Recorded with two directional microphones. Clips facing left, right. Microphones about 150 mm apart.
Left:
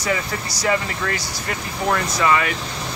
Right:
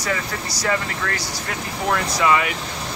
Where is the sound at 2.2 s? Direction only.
15° right (ahead or behind).